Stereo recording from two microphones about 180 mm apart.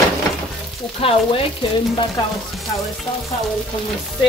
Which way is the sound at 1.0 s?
30° left (ahead or behind).